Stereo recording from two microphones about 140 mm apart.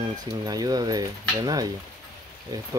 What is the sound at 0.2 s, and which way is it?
Speech, 25° right (ahead or behind).